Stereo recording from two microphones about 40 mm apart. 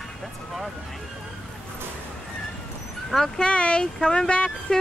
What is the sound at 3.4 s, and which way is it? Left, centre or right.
Speech, left.